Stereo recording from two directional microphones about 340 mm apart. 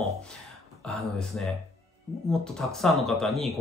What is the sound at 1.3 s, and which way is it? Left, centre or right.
Speech, centre.